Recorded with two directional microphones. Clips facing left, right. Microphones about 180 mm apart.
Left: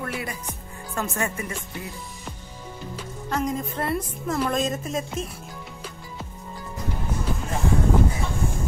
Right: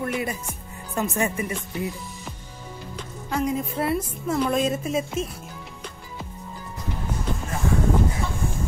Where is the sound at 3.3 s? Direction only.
10° right (ahead or behind).